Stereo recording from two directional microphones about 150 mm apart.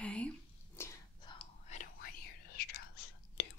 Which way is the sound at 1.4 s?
50° left (ahead or behind).